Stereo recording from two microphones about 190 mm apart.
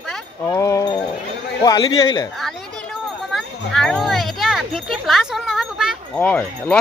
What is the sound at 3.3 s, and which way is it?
Children playing, centre (ahead or behind).